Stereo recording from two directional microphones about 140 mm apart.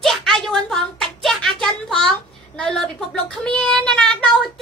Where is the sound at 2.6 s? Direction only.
5° left (ahead or behind).